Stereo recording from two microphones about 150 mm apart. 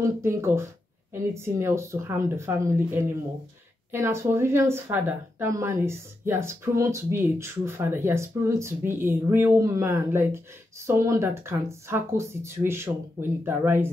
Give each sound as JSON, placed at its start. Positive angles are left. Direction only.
{"t": 0.0, "sound": "a woman's voice", "side_deg": -20}